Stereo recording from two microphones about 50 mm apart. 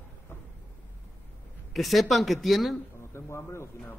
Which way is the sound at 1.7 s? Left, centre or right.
Centre.